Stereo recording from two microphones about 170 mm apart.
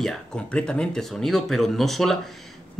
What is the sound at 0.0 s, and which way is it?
Speech, 5° left (ahead or behind).